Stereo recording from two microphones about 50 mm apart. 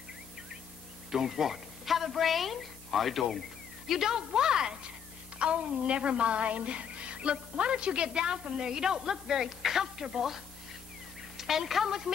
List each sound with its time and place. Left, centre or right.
1.1 s a woman's voice: centre